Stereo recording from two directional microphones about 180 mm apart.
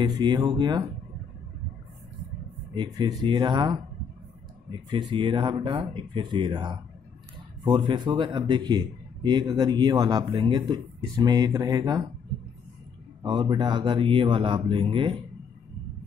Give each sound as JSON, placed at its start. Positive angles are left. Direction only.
{"t": 0.0, "sound": "a man's voice", "side_deg": -25}
{"t": 2.7, "sound": "a man's voice", "side_deg": -25}
{"t": 4.8, "sound": "a man's voice", "side_deg": -25}
{"t": 13.2, "sound": "a man's voice", "side_deg": -25}